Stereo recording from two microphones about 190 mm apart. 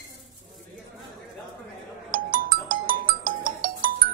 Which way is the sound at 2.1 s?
45° right (ahead or behind).